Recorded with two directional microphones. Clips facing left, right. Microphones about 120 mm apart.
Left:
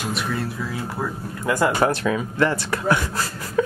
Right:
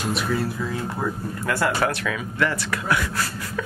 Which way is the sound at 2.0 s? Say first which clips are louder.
Left 4 dB; 30° left (ahead or behind).